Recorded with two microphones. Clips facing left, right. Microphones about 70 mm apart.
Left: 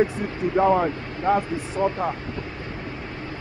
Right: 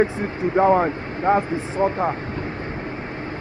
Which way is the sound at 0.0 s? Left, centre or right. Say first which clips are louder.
Right 2 dB; right.